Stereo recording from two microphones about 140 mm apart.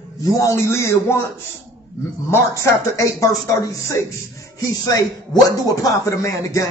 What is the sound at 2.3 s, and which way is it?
Speech, 20° left (ahead or behind).